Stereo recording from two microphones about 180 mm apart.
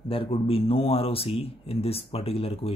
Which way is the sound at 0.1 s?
30° left (ahead or behind).